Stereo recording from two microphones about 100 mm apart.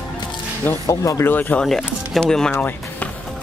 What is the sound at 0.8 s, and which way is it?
Speech, 30° left (ahead or behind).